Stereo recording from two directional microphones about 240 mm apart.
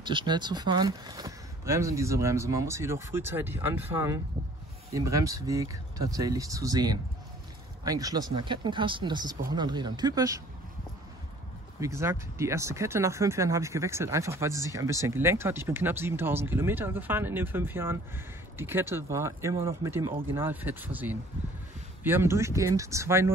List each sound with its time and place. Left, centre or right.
0.0 s speech: centre
11.8 s speech: centre